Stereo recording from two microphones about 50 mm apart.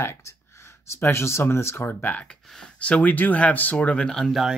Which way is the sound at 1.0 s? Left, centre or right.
Left.